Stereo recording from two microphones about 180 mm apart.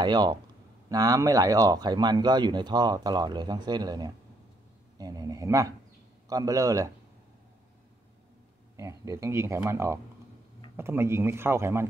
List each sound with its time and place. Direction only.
0.0 s speech: 25° right (ahead or behind)
8.7 s speech: 15° right (ahead or behind)